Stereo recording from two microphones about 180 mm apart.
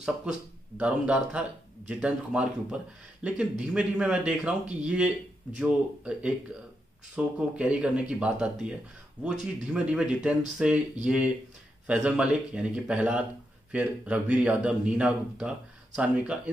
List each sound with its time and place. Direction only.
0.0 s speech: 5° right (ahead or behind)
11.9 s speech: 5° right (ahead or behind)